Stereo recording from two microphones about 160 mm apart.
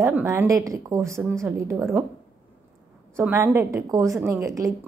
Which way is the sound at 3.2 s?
15° right (ahead or behind).